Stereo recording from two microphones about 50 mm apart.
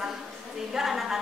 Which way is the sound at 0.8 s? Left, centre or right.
Centre.